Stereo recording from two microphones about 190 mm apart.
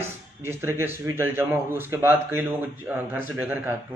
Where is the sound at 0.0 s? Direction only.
15° right (ahead or behind).